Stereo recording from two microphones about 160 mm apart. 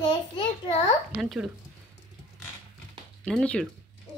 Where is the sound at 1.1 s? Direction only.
Centre (ahead or behind).